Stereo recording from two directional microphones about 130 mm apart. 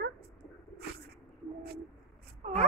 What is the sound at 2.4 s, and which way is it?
Wail, 55° right (ahead or behind).